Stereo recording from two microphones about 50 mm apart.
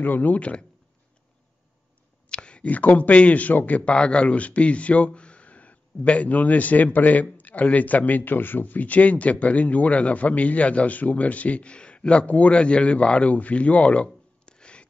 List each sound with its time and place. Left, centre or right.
0.0 s speech: left
0.4 s speech: left
2.2 s speech: centre